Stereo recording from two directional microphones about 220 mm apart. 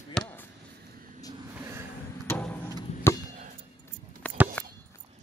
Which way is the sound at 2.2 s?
5° left (ahead or behind).